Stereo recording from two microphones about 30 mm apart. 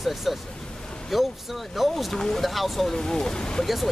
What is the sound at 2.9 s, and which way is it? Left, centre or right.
Speech, centre.